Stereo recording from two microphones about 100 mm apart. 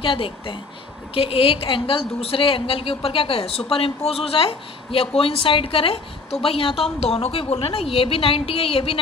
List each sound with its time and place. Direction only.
0.0 s a woman's voice: 60° left (ahead or behind)